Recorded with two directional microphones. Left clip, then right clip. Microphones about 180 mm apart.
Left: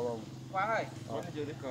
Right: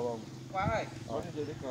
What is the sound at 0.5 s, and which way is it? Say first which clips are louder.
Speech: left 1 dB; 25° left (ahead or behind).